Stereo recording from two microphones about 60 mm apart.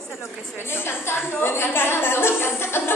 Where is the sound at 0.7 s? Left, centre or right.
Left.